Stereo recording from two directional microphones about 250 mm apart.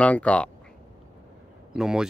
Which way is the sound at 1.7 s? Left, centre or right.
Centre.